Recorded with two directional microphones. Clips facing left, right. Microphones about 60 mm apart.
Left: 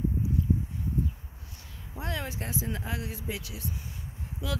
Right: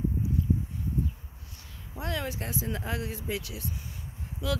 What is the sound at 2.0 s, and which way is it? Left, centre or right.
Speech, left.